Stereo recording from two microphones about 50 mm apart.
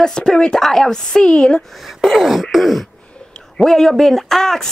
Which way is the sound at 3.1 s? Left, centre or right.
Centre.